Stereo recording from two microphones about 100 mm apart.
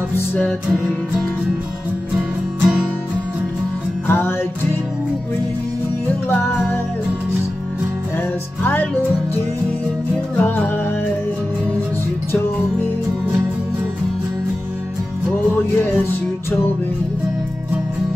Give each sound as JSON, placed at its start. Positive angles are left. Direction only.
{"t": 2.1, "sound": "music", "side_deg": -10}
{"t": 4.1, "sound": "music", "side_deg": 20}
{"t": 6.2, "sound": "music", "side_deg": 20}
{"t": 10.3, "sound": "music", "side_deg": 20}